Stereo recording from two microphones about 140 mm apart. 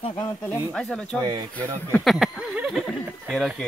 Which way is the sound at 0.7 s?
5° left (ahead or behind).